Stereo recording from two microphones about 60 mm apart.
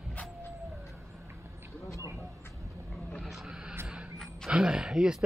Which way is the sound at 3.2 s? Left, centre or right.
Centre.